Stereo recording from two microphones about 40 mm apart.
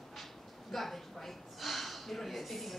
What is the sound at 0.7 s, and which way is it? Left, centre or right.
A woman's voice, centre.